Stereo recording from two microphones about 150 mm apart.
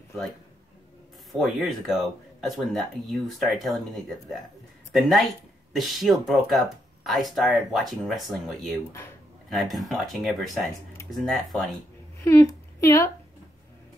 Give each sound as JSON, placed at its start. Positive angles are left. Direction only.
{"t": 1.3, "sound": "speech", "side_deg": 0}
{"t": 12.2, "sound": "speech", "side_deg": 20}